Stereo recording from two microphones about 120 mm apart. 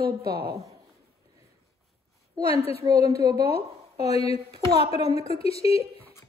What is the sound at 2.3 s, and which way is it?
A woman's voice, 55° left (ahead or behind).